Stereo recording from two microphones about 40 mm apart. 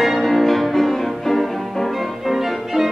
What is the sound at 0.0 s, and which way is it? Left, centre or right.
Music, centre.